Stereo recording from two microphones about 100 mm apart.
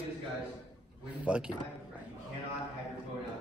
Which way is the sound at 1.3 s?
10° right (ahead or behind).